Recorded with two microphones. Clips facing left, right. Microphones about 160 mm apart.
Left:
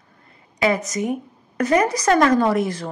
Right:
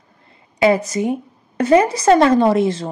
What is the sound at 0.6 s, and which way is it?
Speech, 30° right (ahead or behind).